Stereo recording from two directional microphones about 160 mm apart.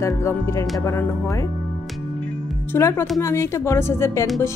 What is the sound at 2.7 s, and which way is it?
Speech, 15° left (ahead or behind).